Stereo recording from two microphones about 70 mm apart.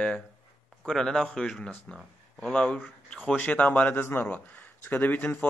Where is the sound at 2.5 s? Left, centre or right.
Centre.